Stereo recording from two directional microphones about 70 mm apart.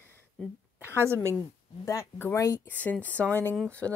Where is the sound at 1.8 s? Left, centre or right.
Left.